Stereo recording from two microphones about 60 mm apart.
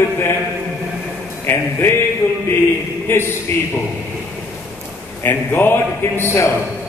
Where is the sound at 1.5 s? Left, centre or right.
Left.